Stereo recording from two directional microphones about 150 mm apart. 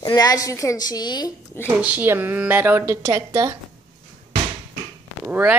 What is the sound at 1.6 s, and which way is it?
A woman's voice, 10° right (ahead or behind).